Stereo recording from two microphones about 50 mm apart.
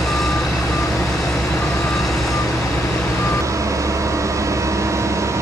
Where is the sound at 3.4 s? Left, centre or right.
Right.